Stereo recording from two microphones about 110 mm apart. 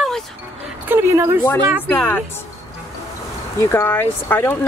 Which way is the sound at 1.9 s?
15° left (ahead or behind).